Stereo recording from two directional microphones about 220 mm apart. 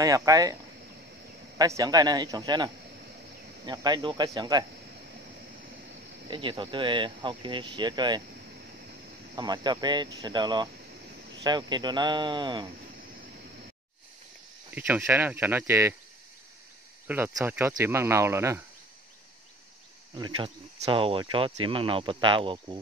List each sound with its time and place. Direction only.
0.0 s speech: 15° right (ahead or behind)
1.6 s speech: 15° right (ahead or behind)
6.3 s speech: 20° right (ahead or behind)
9.3 s speech: 20° right (ahead or behind)
14.7 s speech: 10° right (ahead or behind)
17.1 s speech: 10° right (ahead or behind)
20.2 s speech: 20° right (ahead or behind)